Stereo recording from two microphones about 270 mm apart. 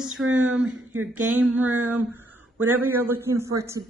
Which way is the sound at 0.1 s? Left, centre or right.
Right.